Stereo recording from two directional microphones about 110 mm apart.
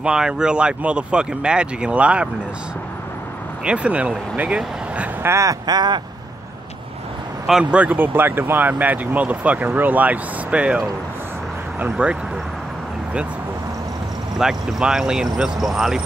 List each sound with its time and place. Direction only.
0.0 s speech: 10° right (ahead or behind)
3.6 s speech: 10° right (ahead or behind)
5.3 s a sound: 30° right (ahead or behind)
7.4 s speech: 10° right (ahead or behind)
14.4 s speech: 5° right (ahead or behind)